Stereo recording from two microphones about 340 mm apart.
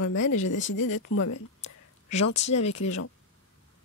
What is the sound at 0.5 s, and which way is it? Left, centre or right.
Speech, left.